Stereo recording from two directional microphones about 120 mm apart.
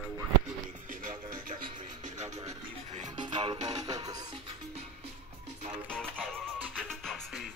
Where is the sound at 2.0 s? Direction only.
70° right (ahead or behind).